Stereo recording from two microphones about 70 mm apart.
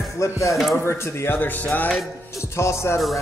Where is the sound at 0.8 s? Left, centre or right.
Left.